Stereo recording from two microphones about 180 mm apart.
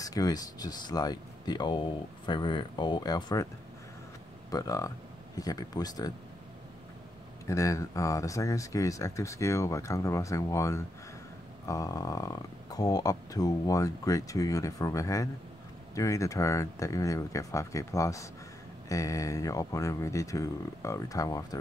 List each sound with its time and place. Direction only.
0.0 s speech: 20° left (ahead or behind)
4.5 s speech: 20° left (ahead or behind)
7.4 s speech: 15° left (ahead or behind)